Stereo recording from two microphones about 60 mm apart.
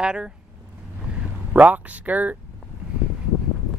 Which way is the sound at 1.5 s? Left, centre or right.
Right.